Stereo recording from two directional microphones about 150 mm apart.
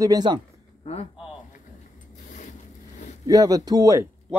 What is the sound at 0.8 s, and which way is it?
Speech, 45° left (ahead or behind).